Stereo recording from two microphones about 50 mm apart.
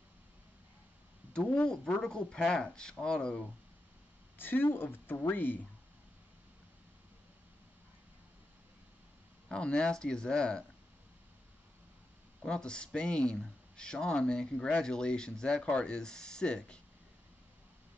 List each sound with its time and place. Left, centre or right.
1.3 s speech: centre
4.4 s speech: left
9.5 s speech: centre
12.4 s speech: centre